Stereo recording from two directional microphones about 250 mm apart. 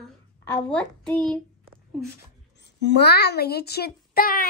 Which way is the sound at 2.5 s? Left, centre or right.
Left.